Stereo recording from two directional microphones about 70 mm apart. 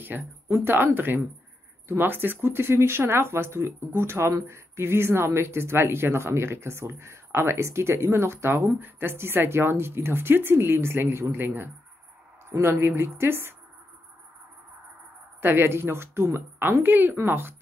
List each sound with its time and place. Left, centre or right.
0.0 s speech: right
4.3 s speech: right
4.7 s speech: right
15.4 s speech: right